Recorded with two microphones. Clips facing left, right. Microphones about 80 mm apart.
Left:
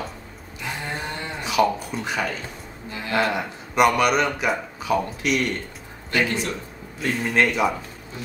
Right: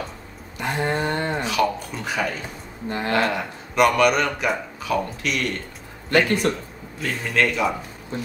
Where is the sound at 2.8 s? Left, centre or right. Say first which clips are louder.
Right 8 dB; right.